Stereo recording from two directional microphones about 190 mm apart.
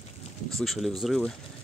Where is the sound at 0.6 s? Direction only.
Centre (ahead or behind).